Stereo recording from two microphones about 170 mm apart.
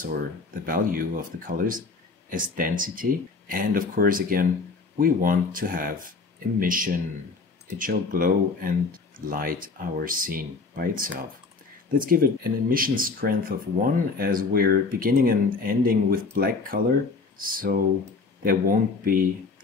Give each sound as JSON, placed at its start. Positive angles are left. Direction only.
{"t": 0.7, "sound": "speech", "side_deg": -55}